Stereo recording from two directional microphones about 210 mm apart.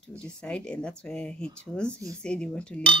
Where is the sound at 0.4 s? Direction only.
5° left (ahead or behind).